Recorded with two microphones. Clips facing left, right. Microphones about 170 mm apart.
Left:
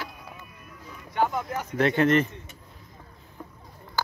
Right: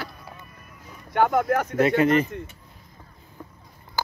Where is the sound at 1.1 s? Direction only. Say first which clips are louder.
Right 6 dB; 65° right (ahead or behind).